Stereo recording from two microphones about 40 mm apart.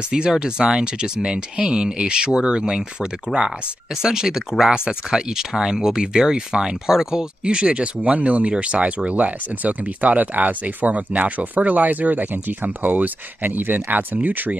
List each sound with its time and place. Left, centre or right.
0.4 s speech: right
3.3 s speech: centre
3.9 s speech: centre
7.4 s speech: right